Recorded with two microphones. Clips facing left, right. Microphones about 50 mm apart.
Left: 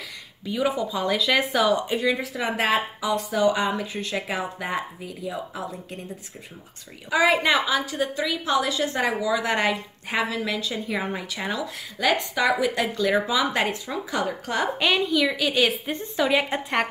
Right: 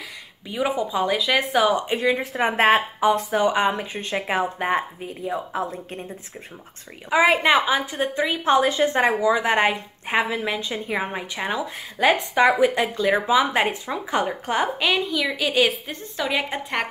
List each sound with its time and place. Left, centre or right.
0.5 s a woman's voice: centre
1.0 s speech: centre
2.0 s speech: right
7.1 s a woman's voice: right
14.8 s a woman's voice: centre
16.2 s a woman's voice: centre